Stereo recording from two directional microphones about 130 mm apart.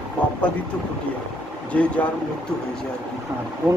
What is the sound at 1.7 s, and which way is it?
Speech, 10° left (ahead or behind).